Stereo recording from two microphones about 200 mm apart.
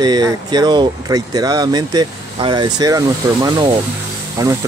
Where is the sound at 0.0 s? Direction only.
20° right (ahead or behind).